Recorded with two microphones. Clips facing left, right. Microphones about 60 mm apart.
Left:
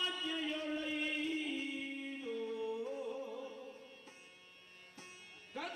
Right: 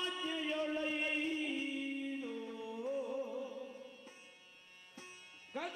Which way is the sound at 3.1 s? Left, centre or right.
Right.